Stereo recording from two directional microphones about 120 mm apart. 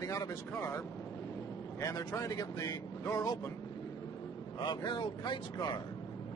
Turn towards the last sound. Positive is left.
turn(degrees=40)  # may be behind; listen again after turning